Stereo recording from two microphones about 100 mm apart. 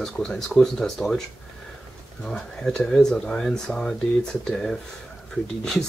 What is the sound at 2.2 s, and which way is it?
Speech, 5° left (ahead or behind).